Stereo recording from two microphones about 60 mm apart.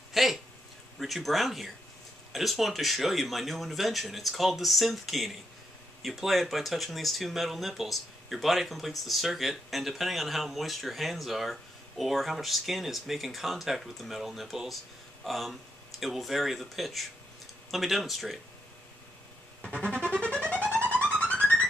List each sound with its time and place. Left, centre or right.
0.1 s speech: centre
19.8 s music: centre
20.2 s violin: centre
21.1 s music: centre